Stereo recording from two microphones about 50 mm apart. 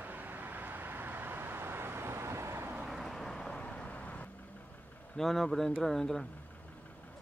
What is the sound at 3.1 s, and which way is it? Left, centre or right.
Vehicle, centre.